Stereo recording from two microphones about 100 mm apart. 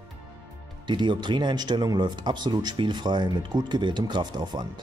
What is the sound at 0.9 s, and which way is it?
Speech, 50° right (ahead or behind).